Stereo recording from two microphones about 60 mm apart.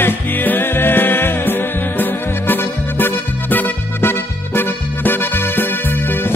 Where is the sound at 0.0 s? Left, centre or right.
Left.